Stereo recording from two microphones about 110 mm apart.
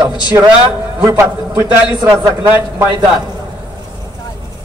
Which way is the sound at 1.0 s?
20° right (ahead or behind).